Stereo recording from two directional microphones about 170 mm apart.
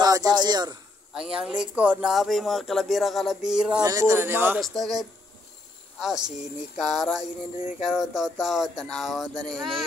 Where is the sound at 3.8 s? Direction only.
20° right (ahead or behind).